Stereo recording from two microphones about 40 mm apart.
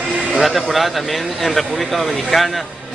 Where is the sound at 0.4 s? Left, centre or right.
Centre.